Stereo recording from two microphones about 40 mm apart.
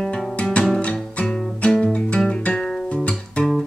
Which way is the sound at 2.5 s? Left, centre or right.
Centre.